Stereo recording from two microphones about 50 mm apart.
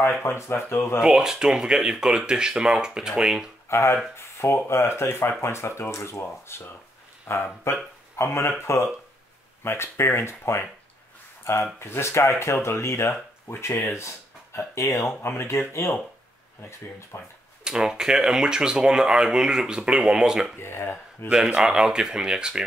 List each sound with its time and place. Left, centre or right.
0.2 s speech: left
1.0 s speech: centre
3.6 s speech: left
4.2 s speech: left
13.9 s a sound: left
14.8 s speech: left
15.2 s speech: left
17.1 s speech: left
17.6 s speech: centre
20.5 s speech: left
21.3 s speech: centre